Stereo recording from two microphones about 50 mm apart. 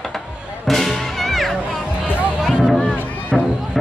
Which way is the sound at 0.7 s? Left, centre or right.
Centre.